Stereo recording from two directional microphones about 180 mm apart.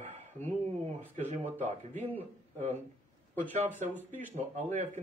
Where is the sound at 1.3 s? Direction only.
40° right (ahead or behind).